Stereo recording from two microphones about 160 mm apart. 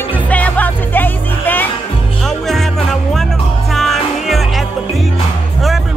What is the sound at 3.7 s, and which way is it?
Music, centre (ahead or behind).